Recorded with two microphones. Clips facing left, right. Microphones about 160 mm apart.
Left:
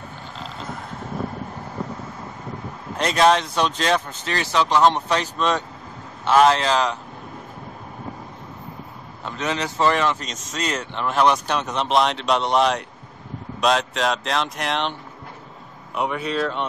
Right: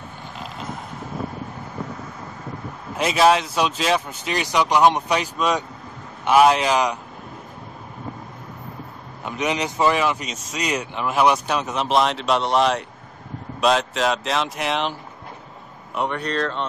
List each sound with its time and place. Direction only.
3.0 s speech: 5° right (ahead or behind)
9.2 s speech: 15° right (ahead or behind); by 16.6 s 5° left (ahead or behind)